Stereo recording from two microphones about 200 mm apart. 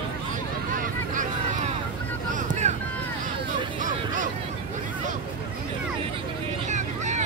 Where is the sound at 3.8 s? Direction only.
40° right (ahead or behind).